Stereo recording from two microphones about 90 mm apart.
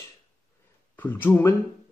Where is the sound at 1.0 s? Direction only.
20° left (ahead or behind).